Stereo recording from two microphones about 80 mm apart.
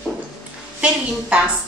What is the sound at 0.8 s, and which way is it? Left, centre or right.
Speech, centre.